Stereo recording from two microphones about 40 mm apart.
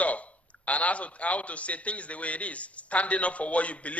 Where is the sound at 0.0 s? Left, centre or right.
Left.